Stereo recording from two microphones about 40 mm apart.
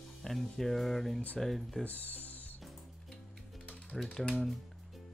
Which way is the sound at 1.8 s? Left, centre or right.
Left.